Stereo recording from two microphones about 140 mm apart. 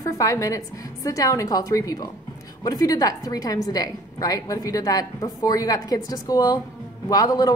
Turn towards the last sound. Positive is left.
turn(degrees=25)  # may be behind; listen again after turning